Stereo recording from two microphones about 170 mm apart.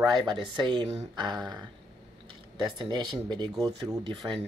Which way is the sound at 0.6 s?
25° right (ahead or behind).